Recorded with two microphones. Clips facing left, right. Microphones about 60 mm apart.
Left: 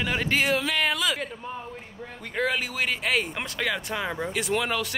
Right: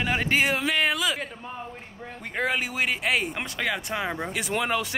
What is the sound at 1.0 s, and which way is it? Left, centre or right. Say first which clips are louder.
Speech: even; centre.